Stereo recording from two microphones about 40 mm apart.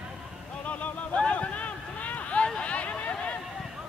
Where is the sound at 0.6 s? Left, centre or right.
Left.